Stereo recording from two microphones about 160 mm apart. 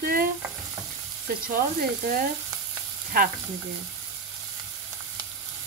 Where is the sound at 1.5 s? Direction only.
60° right (ahead or behind).